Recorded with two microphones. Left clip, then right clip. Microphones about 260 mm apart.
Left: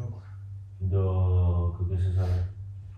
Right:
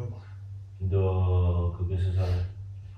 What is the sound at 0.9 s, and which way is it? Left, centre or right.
Mantra, right.